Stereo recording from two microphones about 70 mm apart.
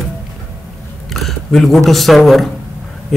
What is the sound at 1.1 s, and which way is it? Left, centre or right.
A woman's voice, centre.